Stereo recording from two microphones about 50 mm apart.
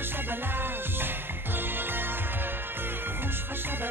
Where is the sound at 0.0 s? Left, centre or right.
Right.